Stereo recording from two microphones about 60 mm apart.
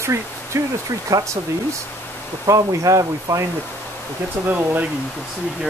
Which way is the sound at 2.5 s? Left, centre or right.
Right.